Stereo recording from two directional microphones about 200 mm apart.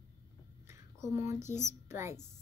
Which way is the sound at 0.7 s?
15° right (ahead or behind).